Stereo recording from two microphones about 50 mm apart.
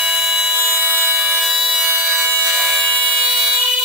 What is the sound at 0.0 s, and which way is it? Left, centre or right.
Fire alarm, centre.